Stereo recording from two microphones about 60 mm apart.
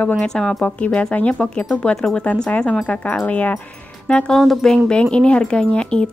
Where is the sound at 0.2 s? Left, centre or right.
Centre.